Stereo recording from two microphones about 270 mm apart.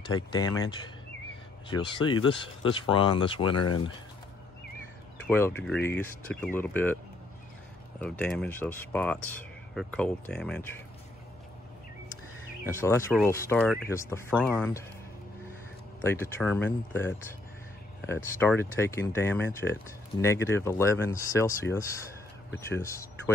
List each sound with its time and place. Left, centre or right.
0.6 s speech: centre
2.2 s speech: centre
3.5 s speech: left
5.2 s speech: centre
8.0 s speech: centre
12.6 s speech: centre
16.0 s speech: centre